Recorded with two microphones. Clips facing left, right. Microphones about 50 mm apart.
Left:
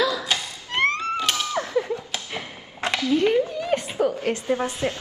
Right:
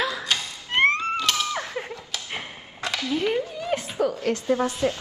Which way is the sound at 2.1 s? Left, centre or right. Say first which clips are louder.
Left 1 dB; left.